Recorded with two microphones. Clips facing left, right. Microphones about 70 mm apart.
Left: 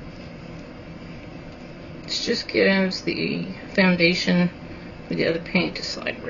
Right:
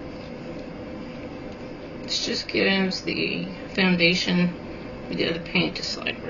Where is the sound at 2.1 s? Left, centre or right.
Left.